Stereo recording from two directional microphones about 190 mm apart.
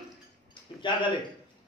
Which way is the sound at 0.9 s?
25° left (ahead or behind).